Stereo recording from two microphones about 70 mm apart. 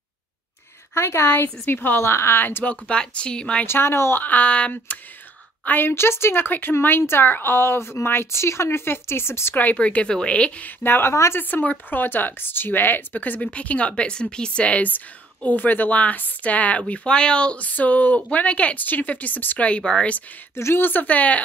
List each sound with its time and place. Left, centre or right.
0.9 s speech: left
2.6 s a woman's voice: centre
3.6 s speech: left
4.2 s a woman's voice: left
5.7 s speech: left
9.6 s a woman's voice: left
10.8 s a woman's voice: left
20.5 s a woman's voice: left